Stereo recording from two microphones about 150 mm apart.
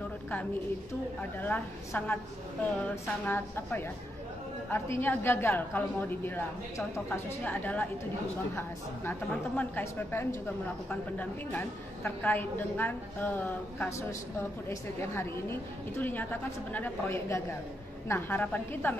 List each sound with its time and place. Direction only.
1.4 s a woman's voice: 15° left (ahead or behind)